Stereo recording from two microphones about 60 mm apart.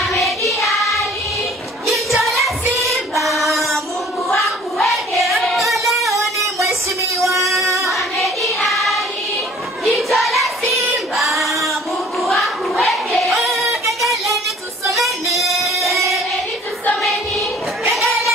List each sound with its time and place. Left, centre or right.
0.0 s choir: centre
1.9 s music: centre
4.4 s singing: centre
7.2 s music: centre
7.5 s female singing: right
7.8 s child singing: centre
15.0 s music: centre
17.8 s a sound: centre